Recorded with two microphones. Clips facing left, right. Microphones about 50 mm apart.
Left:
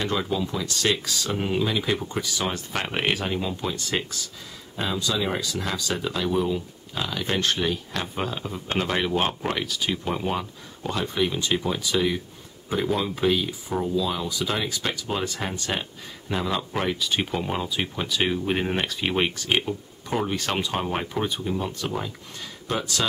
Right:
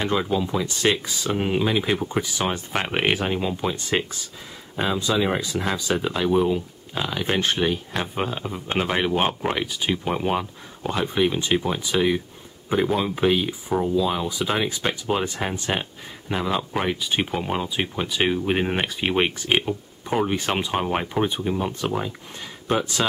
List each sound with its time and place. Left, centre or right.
0.0 s speech: centre